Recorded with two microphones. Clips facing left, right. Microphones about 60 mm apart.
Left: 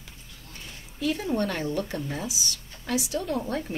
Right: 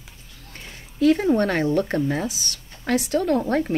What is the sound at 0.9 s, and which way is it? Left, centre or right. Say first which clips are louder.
Speech: right 9 dB; right.